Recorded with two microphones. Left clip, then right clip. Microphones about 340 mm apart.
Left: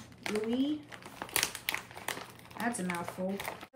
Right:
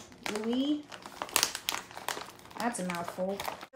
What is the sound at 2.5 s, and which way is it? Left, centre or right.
Speech, centre.